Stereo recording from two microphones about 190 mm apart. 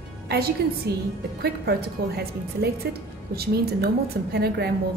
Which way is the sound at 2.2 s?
55° right (ahead or behind).